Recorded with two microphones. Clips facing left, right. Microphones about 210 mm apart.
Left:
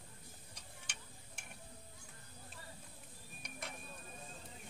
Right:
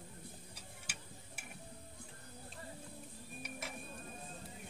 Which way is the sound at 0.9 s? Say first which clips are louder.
Right 5 dB; 5° right (ahead or behind).